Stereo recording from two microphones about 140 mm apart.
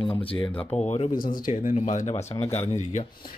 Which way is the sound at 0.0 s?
40° left (ahead or behind).